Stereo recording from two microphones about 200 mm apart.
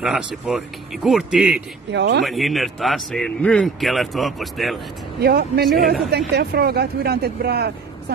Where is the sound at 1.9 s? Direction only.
55° right (ahead or behind).